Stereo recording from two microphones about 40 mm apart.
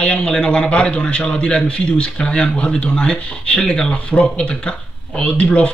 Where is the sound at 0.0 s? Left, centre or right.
Left.